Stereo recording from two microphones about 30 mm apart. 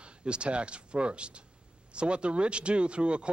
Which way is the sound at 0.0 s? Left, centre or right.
Right.